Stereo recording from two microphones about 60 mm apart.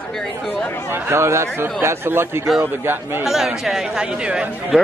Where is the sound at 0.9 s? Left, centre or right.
Right.